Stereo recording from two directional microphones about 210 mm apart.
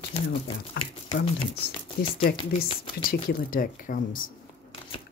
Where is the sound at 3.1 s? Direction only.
40° left (ahead or behind).